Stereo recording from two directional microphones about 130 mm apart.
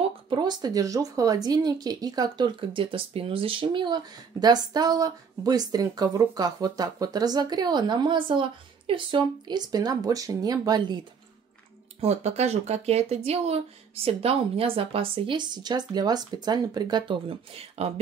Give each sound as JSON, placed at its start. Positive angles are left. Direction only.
{"t": 0.3, "sound": "speech", "side_deg": -35}
{"t": 12.0, "sound": "speech", "side_deg": -55}